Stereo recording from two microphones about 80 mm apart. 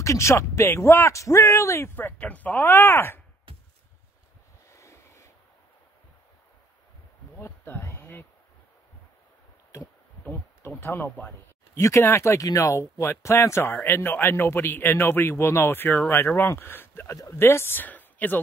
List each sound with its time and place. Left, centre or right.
0.0 s speech: left
4.6 s vehicle: left
7.3 s a sound: left
10.8 s speech: left
11.8 s speech: left